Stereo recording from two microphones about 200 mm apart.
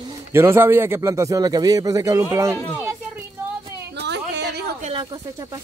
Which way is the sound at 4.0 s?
55° right (ahead or behind).